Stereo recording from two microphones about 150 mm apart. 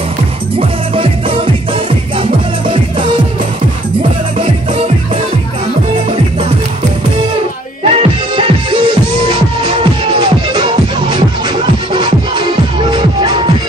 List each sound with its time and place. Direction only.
0.6 s music: 40° right (ahead or behind)
4.4 s music: 40° right (ahead or behind)
7.9 s music: 40° right (ahead or behind)